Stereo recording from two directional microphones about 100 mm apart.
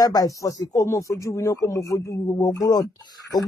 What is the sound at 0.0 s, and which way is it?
Speech, 40° left (ahead or behind).